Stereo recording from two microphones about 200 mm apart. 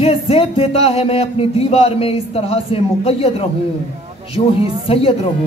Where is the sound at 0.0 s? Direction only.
30° left (ahead or behind).